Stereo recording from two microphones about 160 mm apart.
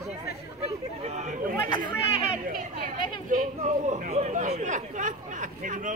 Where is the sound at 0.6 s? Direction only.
45° right (ahead or behind).